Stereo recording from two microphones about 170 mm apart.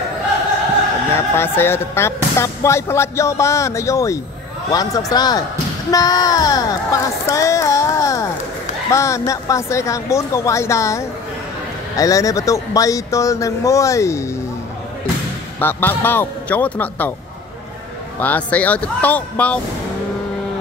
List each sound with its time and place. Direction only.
1.1 s speech: 15° left (ahead or behind)
15.6 s speech: 10° left (ahead or behind)
18.2 s speech: 10° left (ahead or behind)